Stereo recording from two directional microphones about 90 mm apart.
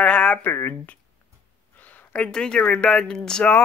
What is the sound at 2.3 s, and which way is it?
Speech, 10° left (ahead or behind).